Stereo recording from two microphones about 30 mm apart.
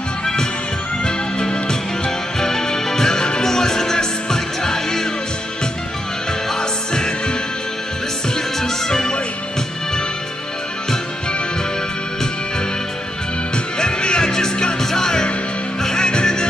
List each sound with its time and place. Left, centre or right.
0.2 s music: left
2.0 s music: centre
6.5 s music: left
8.5 s music: centre
13.7 s music: left
14.8 s music: centre